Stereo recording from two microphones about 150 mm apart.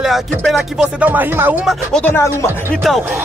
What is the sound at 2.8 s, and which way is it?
Music, centre (ahead or behind).